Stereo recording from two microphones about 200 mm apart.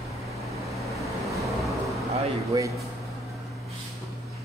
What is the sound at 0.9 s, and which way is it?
Vehicle, centre (ahead or behind).